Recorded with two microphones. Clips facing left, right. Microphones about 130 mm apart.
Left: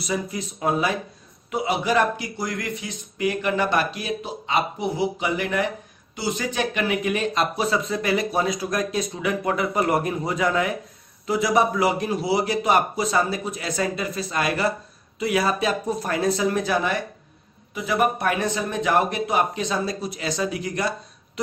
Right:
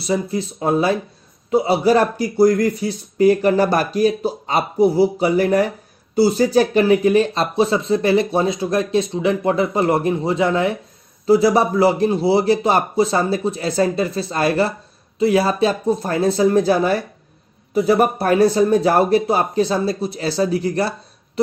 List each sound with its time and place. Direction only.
0.0 s speech: 30° right (ahead or behind)